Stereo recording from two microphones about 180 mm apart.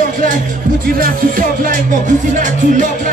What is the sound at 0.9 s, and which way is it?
Music, 50° right (ahead or behind).